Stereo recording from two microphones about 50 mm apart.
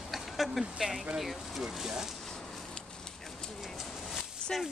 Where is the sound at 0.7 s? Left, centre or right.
Centre.